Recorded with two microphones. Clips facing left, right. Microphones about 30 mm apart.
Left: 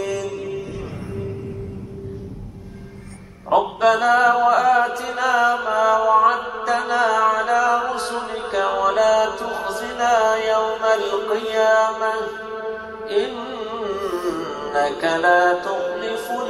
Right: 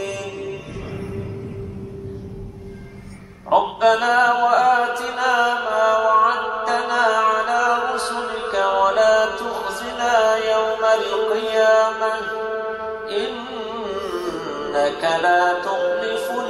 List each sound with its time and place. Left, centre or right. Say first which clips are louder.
0.0 s music: left 3 dB; centre
3.5 s a sound: right 1 dB; centre
3.8 s music: left 1 dB; centre
8.2 s a sound: right 1 dB; centre
8.8 s mantra: even; centre
12.3 s mantra: right 5 dB; right
13.2 s music: left 5 dB; centre
13.9 s music: left 1 dB; right
14.2 s music: left 1 dB; centre